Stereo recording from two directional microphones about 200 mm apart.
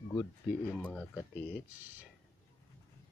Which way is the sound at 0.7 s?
5° left (ahead or behind).